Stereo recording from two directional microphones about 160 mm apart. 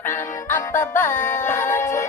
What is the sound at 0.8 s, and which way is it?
Music, 15° left (ahead or behind).